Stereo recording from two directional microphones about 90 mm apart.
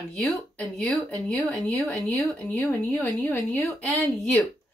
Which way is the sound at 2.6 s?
15° left (ahead or behind).